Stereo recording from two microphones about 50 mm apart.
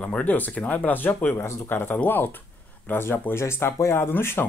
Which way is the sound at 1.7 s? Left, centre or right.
Left.